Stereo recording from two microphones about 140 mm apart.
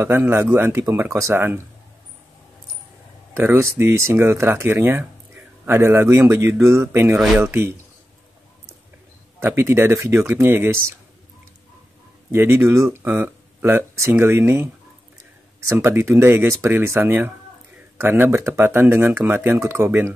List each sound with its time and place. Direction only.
0.0 s speech: 20° right (ahead or behind)
3.3 s speech: 20° right (ahead or behind)
9.4 s speech: 15° right (ahead or behind)
12.3 s speech: 20° right (ahead or behind)
15.7 s speech: 20° right (ahead or behind)